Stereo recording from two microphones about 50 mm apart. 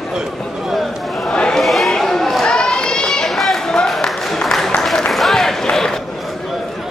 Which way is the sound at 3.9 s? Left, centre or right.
Centre.